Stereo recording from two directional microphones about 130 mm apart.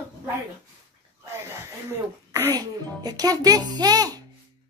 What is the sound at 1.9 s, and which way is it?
Speech, 20° right (ahead or behind).